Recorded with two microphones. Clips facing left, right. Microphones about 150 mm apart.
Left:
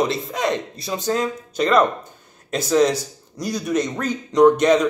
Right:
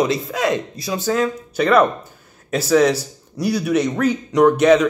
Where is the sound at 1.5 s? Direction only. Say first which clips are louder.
Right 2 dB; 10° right (ahead or behind).